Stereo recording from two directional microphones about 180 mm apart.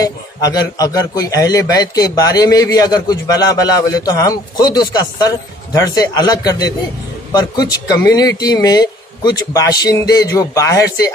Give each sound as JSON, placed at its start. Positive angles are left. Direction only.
{"t": 0.0, "sound": "a man's voice", "side_deg": 20}